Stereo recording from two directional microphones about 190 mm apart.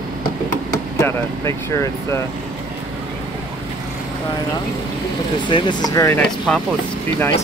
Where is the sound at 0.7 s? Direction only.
15° left (ahead or behind).